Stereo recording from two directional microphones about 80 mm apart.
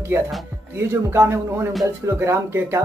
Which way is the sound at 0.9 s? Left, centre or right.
Right.